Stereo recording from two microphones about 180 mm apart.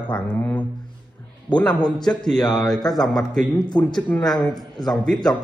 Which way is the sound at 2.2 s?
Centre (ahead or behind).